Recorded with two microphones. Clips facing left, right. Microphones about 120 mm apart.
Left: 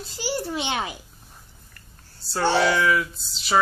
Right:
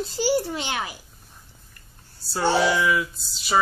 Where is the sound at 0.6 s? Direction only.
20° left (ahead or behind).